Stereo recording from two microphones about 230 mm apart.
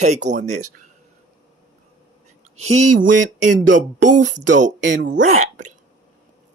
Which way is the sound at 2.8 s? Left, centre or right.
Right.